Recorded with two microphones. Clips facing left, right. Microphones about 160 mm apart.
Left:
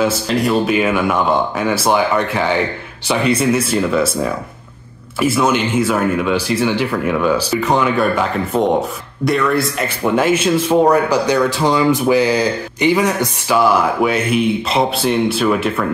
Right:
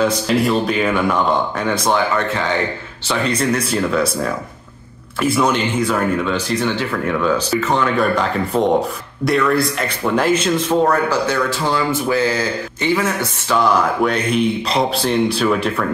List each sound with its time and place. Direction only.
0.0 s speech: 5° left (ahead or behind)
13.6 s speech: 5° left (ahead or behind)